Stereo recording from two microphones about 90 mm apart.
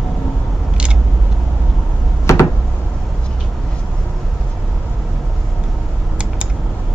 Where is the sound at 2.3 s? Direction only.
35° left (ahead or behind).